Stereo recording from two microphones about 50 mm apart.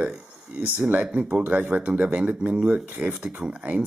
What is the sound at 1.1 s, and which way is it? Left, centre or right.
Speech, right.